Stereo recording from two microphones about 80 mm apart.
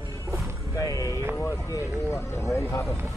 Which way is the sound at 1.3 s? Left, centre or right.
Left.